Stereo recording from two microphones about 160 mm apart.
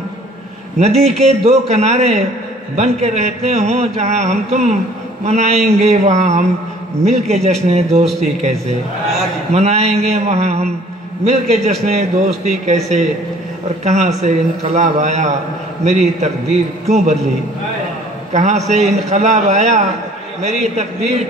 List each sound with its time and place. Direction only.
0.7 s speech: 40° right (ahead or behind)
18.3 s a man's voice: 45° right (ahead or behind)